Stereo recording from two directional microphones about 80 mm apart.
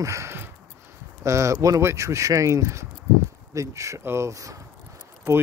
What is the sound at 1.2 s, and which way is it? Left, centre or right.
Speech, right.